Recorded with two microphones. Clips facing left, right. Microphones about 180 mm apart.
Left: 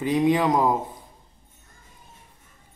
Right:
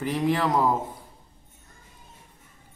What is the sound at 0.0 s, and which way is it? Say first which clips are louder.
Speech: left 4 dB; 15° left (ahead or behind).